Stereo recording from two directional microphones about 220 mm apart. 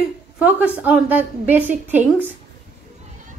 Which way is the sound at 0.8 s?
5° right (ahead or behind).